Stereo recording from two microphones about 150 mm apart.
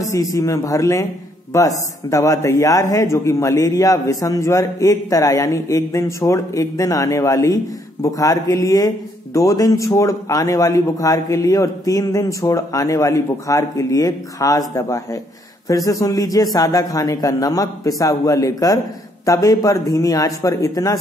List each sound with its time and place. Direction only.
0.0 s a man's voice: 20° left (ahead or behind)